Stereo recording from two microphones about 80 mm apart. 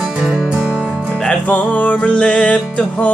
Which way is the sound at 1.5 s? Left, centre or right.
Centre.